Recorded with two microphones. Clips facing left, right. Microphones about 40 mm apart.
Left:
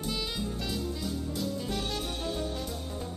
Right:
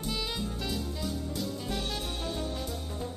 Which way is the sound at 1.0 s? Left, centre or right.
Centre.